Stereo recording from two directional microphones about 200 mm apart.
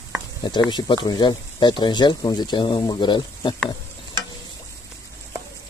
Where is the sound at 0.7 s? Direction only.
20° left (ahead or behind).